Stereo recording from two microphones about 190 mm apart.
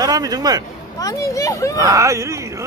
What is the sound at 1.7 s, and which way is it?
Speech, 15° right (ahead or behind).